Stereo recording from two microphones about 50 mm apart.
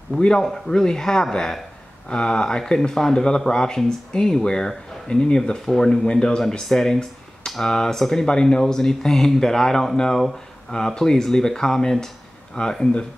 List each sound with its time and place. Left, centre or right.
0.2 s speech: centre
12.6 s speech: left